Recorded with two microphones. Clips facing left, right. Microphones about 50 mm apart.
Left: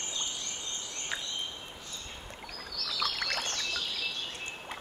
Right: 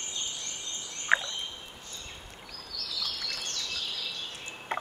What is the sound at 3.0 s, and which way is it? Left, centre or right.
Bird, left.